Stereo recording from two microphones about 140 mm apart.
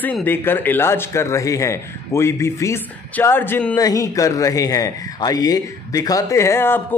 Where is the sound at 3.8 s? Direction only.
25° left (ahead or behind).